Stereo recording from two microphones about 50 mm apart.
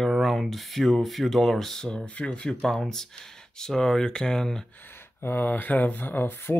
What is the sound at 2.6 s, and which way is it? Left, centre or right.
Speech, centre.